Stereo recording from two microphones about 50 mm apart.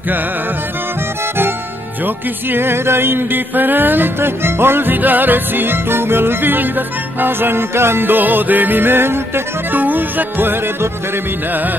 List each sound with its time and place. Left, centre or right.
2.0 s music: right